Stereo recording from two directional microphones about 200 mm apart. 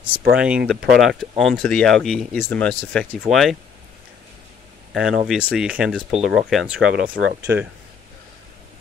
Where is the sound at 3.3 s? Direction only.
35° right (ahead or behind).